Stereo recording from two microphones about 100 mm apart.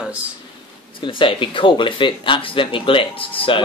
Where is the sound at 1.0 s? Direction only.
60° left (ahead or behind).